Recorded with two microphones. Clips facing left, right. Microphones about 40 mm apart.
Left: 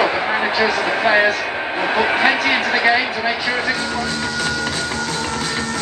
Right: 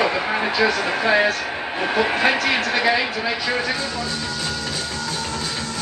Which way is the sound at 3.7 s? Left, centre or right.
Left.